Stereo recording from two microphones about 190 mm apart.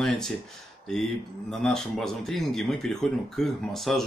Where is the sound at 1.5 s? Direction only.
Centre (ahead or behind).